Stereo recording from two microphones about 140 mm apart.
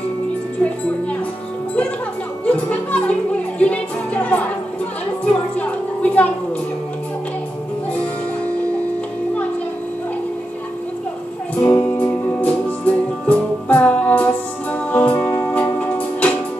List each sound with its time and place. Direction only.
2.4 s music: 10° left (ahead or behind)
11.6 s music: 10° left (ahead or behind)